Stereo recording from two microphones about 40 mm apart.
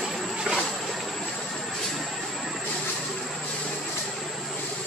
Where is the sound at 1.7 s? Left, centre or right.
Centre.